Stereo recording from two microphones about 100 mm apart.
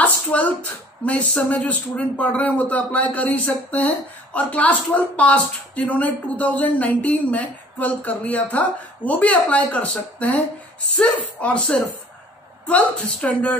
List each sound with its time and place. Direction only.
0.0 s speech: 15° left (ahead or behind)
11.4 s speech: 10° left (ahead or behind)